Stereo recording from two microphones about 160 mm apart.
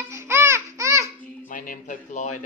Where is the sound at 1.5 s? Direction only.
55° left (ahead or behind).